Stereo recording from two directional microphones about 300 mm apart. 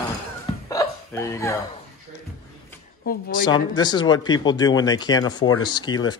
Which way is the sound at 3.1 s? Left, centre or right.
Left.